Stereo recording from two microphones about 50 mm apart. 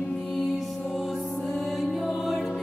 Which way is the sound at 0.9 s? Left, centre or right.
Centre.